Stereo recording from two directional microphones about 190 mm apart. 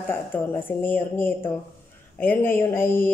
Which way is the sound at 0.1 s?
10° left (ahead or behind).